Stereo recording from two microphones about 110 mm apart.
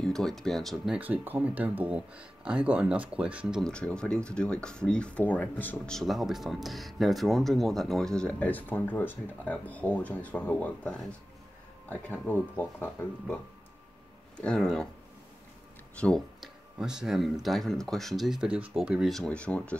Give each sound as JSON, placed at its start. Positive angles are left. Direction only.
{"t": 0.0, "sound": "speech", "side_deg": 5}
{"t": 0.9, "sound": "speech", "side_deg": -15}
{"t": 3.6, "sound": "speech", "side_deg": 10}
{"t": 5.9, "sound": "speech", "side_deg": 0}
{"t": 16.3, "sound": "speech", "side_deg": -5}